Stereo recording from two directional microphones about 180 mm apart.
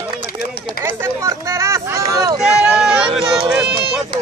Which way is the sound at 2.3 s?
5° right (ahead or behind).